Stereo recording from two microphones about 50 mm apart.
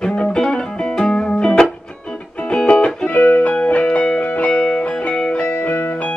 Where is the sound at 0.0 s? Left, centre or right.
Centre.